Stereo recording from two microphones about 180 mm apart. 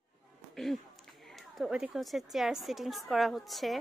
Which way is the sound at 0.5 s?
Centre (ahead or behind).